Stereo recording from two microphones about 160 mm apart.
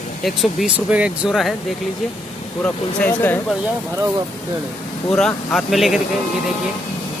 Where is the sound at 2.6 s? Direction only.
10° left (ahead or behind).